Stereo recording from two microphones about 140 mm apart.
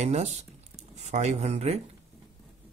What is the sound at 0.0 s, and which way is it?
Speech, 55° right (ahead or behind).